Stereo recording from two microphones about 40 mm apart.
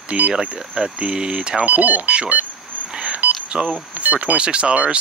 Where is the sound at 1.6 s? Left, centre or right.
Right.